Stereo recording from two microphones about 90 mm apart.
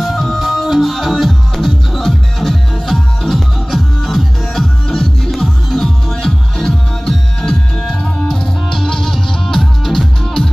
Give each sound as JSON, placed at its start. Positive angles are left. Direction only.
{"t": 0.0, "sound": "music", "side_deg": 0}